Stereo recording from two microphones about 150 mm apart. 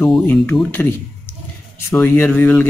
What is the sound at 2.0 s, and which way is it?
Speech, 15° left (ahead or behind).